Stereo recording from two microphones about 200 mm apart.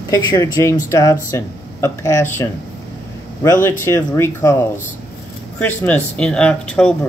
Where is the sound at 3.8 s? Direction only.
20° left (ahead or behind).